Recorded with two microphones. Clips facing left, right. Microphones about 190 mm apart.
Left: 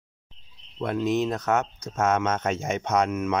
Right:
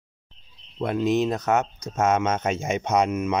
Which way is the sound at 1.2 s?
10° right (ahead or behind).